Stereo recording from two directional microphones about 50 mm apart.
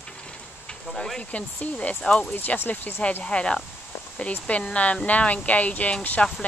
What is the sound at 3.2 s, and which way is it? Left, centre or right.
Speech, centre.